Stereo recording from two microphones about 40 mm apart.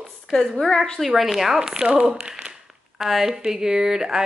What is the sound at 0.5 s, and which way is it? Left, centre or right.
Speech, centre.